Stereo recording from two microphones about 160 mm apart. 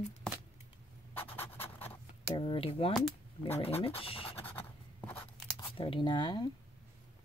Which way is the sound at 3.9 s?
35° left (ahead or behind).